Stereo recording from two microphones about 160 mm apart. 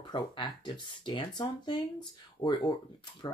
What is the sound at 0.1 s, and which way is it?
Speech, 30° left (ahead or behind).